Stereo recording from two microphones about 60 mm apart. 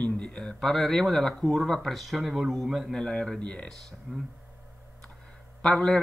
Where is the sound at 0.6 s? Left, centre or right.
Centre.